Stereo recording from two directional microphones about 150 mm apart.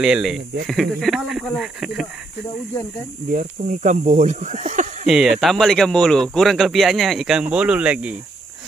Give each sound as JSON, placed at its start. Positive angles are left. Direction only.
{"t": 0.0, "sound": "speech", "side_deg": -5}
{"t": 3.3, "sound": "speech", "side_deg": -60}
{"t": 5.0, "sound": "speech", "side_deg": 0}